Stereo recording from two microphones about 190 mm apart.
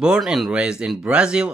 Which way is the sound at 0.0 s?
5° right (ahead or behind).